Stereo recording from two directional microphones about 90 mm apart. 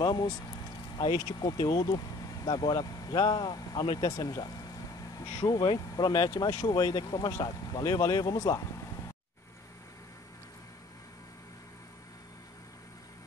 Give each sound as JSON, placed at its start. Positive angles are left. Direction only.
{"t": 0.0, "sound": "speech", "side_deg": 50}
{"t": 5.1, "sound": "speech", "side_deg": 40}